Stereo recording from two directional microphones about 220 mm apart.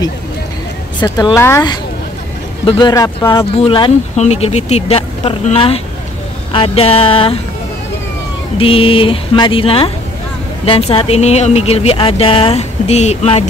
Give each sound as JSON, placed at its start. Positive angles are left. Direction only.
{"t": 1.0, "sound": "speech", "side_deg": 15}
{"t": 8.5, "sound": "speech", "side_deg": 25}